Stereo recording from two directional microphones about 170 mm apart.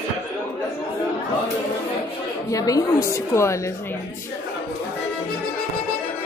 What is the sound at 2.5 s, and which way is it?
A woman's voice, 20° left (ahead or behind).